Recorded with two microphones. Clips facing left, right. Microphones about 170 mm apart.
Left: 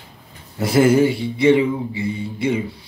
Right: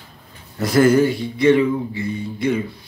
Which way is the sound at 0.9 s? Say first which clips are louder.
Even; 25° left (ahead or behind).